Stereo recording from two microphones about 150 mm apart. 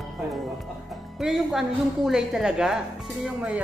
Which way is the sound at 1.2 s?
Centre (ahead or behind).